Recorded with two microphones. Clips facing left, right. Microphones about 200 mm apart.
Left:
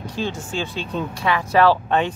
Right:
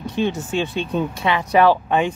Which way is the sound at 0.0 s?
20° right (ahead or behind).